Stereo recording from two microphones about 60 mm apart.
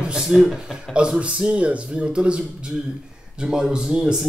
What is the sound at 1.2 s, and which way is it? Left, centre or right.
Speech, right.